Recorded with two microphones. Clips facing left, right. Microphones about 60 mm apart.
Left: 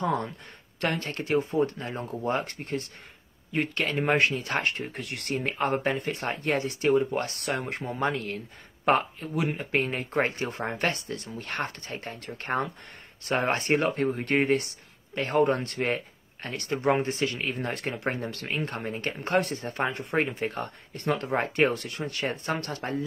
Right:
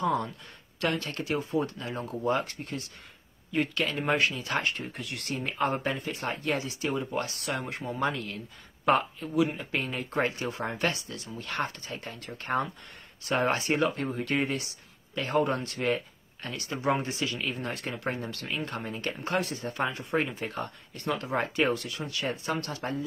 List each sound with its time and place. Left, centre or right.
0.0 s speech: left